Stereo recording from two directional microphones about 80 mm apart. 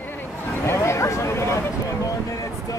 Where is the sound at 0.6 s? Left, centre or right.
Left.